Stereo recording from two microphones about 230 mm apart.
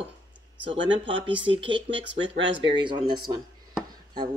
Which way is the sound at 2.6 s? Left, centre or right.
Centre.